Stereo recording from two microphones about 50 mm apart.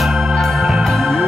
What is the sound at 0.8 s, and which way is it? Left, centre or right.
Music, centre.